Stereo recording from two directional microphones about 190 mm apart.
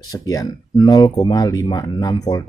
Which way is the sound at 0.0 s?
20° left (ahead or behind).